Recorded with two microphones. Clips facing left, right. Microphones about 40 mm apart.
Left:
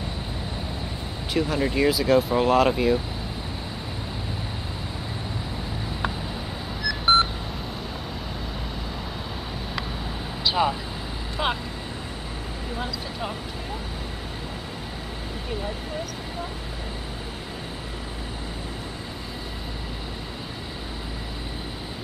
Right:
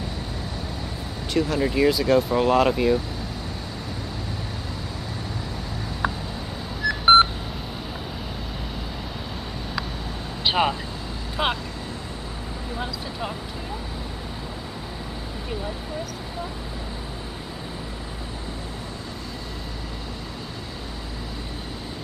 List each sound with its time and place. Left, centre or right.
1.3 s speech: centre
6.9 s telephone dialing: right
10.4 s vehicle: right
11.4 s vehicle: centre
12.7 s a sound: centre